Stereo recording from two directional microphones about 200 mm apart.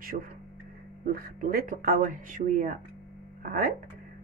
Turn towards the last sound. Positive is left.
turn(degrees=-45)  # may be behind; listen again after turning